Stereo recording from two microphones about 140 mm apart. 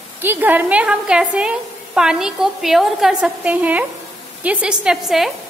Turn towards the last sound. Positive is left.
turn(degrees=0)  # may be behind; listen again after turning